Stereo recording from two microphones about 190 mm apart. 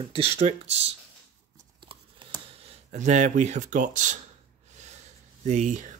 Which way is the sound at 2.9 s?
40° right (ahead or behind).